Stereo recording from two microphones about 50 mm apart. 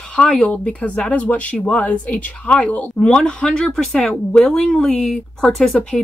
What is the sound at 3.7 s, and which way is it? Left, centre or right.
Speech, centre.